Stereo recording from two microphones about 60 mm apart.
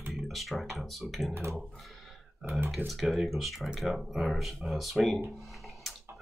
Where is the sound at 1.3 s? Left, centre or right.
Right.